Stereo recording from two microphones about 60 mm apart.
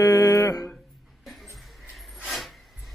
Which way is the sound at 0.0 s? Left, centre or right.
Left.